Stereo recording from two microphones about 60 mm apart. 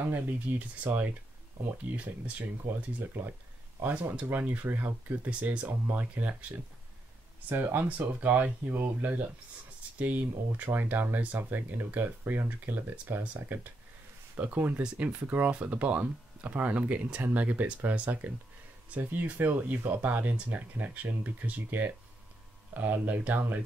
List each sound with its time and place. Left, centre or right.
0.1 s speech: right
2.0 s speech: right
2.7 s speech: right
7.8 s speech: right
19.3 s speech: right